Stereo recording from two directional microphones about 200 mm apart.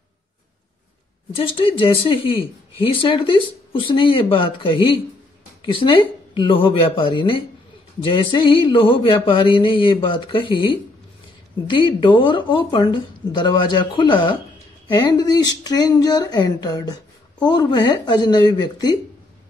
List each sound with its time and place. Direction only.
1.3 s speech: 25° left (ahead or behind)